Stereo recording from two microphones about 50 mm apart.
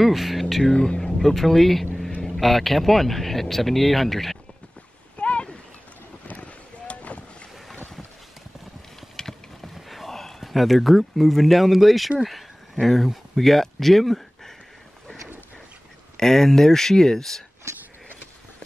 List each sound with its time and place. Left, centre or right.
0.0 s speech: centre
0.7 s speech: centre
1.1 s speech: centre
5.1 s a sound: left
6.2 s boat: left
9.1 s vehicle: centre
9.8 s speech: centre
16.2 s speech: centre